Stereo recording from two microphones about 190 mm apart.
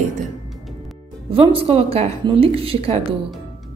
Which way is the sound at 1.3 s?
30° right (ahead or behind).